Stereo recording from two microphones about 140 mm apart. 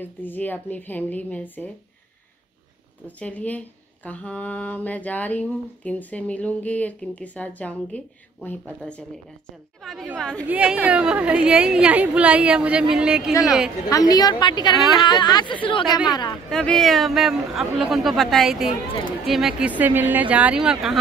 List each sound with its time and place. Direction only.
0.0 s speech: 15° left (ahead or behind)
3.2 s speech: 10° left (ahead or behind)
10.5 s a woman's voice: 10° right (ahead or behind)
13.8 s a woman's voice: 25° left (ahead or behind)
14.8 s speech: centre (ahead or behind)
15.0 s speech: 30° left (ahead or behind)
16.4 s a woman's voice: 5° left (ahead or behind)